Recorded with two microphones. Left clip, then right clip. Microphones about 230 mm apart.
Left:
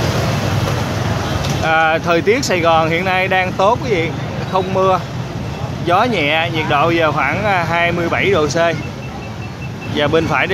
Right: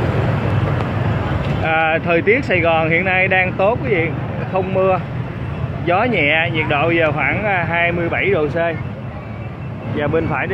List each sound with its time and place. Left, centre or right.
1.6 s speech: left
9.9 s speech: left